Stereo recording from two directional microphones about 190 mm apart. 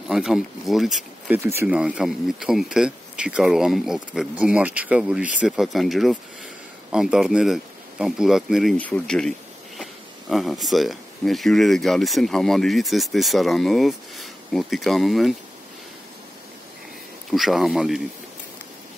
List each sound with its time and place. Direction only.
0.1 s speech: 5° right (ahead or behind)
1.4 s speech: 15° right (ahead or behind)
17.3 s speech: centre (ahead or behind)